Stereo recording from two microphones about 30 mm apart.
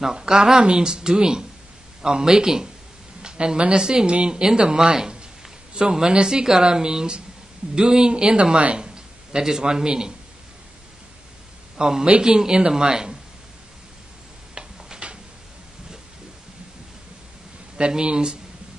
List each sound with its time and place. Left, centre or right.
0.1 s speech: right
4.4 s a man's voice: right
11.7 s a man's voice: right
14.5 s tick-tock: right
17.7 s speech: right